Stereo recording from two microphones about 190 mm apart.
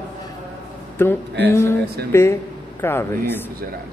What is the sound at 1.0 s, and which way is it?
A man's voice, 10° left (ahead or behind).